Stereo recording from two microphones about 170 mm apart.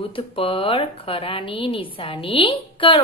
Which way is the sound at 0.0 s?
30° left (ahead or behind).